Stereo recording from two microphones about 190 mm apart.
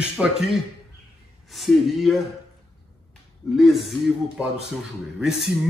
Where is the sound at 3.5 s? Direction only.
Centre (ahead or behind).